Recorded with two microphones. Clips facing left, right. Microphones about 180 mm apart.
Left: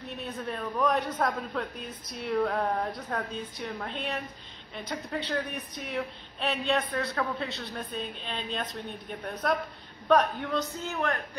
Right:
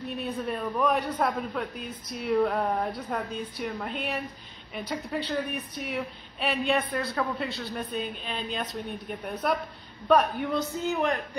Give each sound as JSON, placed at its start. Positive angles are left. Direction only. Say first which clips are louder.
{"t": 0.2, "sound": "a woman's voice", "louder": "right 3 dB", "side_deg": -10}
{"t": 2.1, "sound": "a sound", "louder": "right 3 dB", "side_deg": -5}
{"t": 3.0, "sound": "a woman's voice", "louder": "right 2 dB", "side_deg": -10}